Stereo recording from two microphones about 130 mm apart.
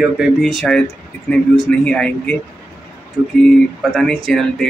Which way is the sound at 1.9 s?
10° left (ahead or behind).